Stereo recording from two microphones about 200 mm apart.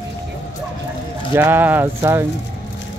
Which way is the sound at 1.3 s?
10° right (ahead or behind).